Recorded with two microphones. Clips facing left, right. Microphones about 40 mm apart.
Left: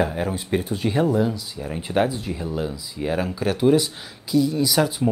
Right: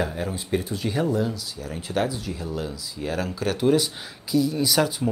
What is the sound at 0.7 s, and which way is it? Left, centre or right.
Speech, left.